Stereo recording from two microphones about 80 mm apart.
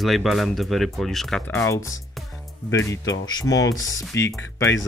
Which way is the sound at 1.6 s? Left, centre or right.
Left.